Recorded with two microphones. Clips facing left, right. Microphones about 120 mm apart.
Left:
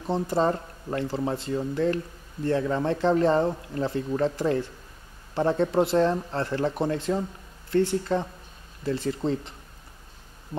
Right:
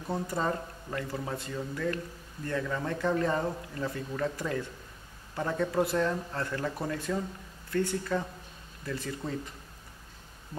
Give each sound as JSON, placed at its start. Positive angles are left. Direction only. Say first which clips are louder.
{"t": 0.0, "sound": "speech", "louder": "left 7 dB", "side_deg": 25}